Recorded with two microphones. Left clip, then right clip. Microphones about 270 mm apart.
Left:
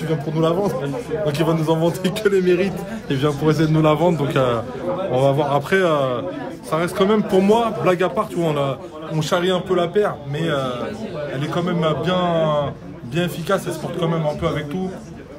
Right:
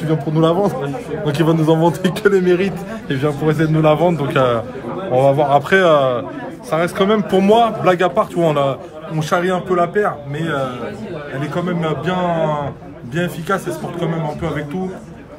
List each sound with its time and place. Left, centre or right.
0.0 s a man's voice: centre
2.4 s a man's voice: centre
11.5 s a man's voice: centre